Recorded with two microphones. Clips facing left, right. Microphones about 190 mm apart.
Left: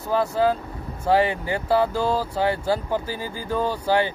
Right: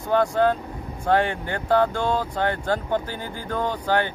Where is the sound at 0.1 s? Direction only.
5° left (ahead or behind).